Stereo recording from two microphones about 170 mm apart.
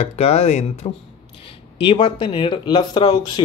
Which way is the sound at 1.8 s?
30° left (ahead or behind).